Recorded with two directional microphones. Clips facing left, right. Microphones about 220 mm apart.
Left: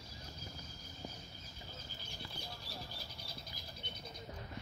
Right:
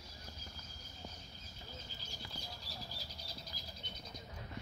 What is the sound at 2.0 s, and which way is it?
Bird flight, 60° left (ahead or behind).